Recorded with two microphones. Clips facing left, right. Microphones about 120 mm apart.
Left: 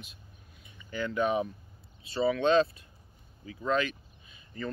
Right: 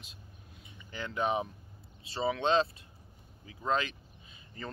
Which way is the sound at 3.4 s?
25° right (ahead or behind).